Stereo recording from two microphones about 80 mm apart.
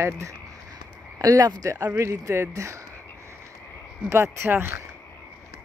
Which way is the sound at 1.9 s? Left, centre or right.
Right.